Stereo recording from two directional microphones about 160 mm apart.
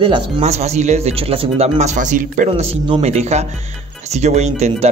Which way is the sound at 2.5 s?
40° right (ahead or behind).